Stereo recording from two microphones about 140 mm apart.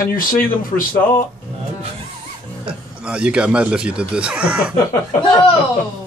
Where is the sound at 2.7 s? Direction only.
5° right (ahead or behind).